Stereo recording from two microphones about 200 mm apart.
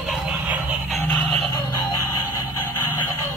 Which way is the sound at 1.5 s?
20° left (ahead or behind).